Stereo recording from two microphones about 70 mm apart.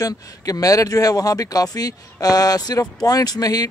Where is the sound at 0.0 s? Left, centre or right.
Left.